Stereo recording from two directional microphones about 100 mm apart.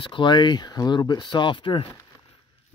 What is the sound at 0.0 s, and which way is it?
Speech, 55° left (ahead or behind).